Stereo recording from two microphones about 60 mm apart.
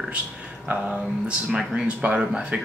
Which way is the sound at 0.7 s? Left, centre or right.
Right.